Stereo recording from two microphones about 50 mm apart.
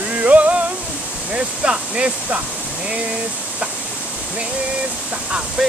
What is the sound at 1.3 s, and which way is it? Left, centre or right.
Speech, centre.